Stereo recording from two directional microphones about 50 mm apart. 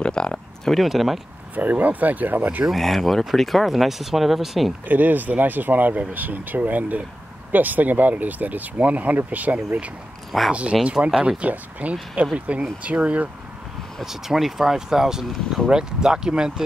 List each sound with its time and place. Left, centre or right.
0.0 s speech: centre
0.7 s speech: centre
1.5 s speech: right
2.7 s speech: centre
4.8 s speech: right
10.5 s speech: right
14.0 s speech: centre